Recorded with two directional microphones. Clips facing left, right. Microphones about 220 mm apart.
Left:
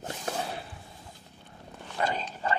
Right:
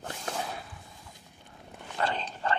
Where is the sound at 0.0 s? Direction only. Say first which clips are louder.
Left 2 dB; 20° left (ahead or behind).